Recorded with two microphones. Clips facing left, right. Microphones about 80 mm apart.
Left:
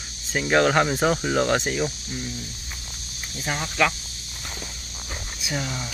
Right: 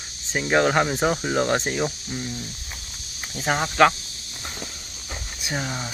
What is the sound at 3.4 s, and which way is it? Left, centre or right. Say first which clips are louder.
Speech: right 6 dB; right.